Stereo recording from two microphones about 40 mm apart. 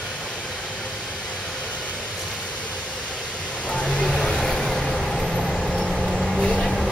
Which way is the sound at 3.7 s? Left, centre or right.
Left.